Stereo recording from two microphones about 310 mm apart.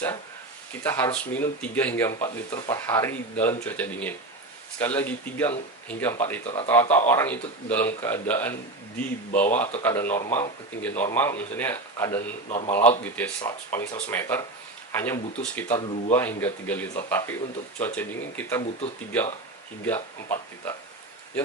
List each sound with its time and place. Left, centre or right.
0.8 s speech: centre
12.4 s speech: left
13.0 s speech: centre
19.9 s speech: centre